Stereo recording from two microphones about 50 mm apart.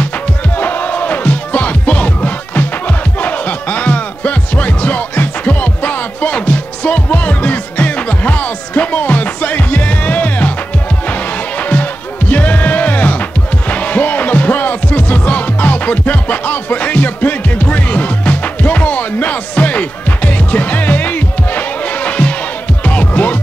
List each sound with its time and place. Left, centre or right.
0.6 s music: left
11.7 s music: left